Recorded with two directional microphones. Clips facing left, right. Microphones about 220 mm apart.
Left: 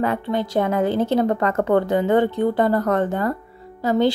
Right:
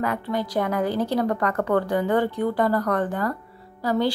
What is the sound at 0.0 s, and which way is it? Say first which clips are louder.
Speech: left 4 dB; 25° left (ahead or behind).